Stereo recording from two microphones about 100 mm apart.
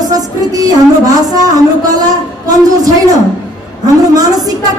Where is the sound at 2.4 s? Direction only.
35° right (ahead or behind).